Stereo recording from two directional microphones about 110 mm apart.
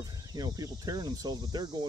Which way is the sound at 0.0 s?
35° right (ahead or behind).